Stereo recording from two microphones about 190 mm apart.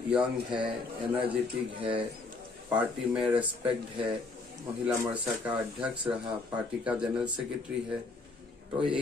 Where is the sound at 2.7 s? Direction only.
5° right (ahead or behind).